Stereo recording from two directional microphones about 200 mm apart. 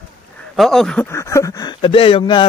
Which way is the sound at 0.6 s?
Centre (ahead or behind).